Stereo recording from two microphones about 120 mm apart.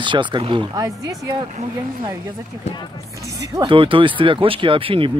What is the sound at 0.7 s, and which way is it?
Speech, 30° right (ahead or behind).